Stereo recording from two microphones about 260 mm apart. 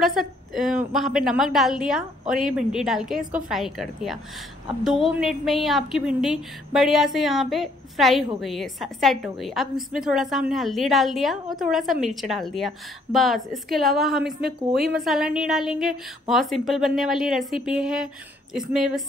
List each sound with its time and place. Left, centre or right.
0.9 s a woman's voice: centre
14.4 s a woman's voice: right
15.0 s a woman's voice: centre